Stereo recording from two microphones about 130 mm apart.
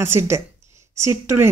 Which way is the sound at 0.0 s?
20° right (ahead or behind).